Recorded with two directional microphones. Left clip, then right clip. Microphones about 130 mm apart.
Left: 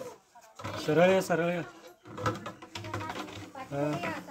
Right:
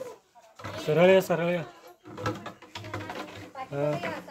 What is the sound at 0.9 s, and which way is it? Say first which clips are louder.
Speech: right 4 dB; 50° right (ahead or behind).